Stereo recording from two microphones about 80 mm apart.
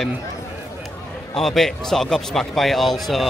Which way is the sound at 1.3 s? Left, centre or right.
Centre.